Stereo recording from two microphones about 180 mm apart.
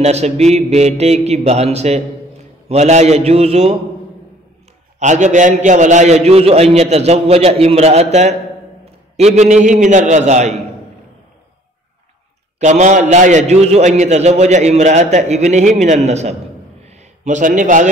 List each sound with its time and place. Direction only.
0.0 s a man's voice: 35° right (ahead or behind)
4.9 s a man's voice: 40° right (ahead or behind)
12.5 s a man's voice: 40° right (ahead or behind)